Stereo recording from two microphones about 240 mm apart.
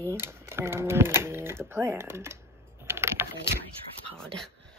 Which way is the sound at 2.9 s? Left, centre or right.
Centre.